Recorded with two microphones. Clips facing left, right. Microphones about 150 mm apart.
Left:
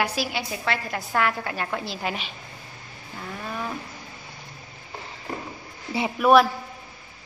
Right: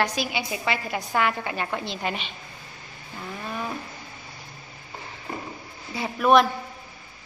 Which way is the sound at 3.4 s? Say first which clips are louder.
Even; centre (ahead or behind).